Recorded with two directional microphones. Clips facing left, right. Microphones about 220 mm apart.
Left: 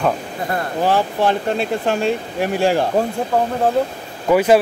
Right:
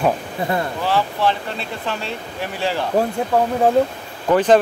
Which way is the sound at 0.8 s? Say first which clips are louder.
Left 4 dB; 45° left (ahead or behind).